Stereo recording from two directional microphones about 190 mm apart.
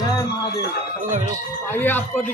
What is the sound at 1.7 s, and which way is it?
Speech, 10° left (ahead or behind).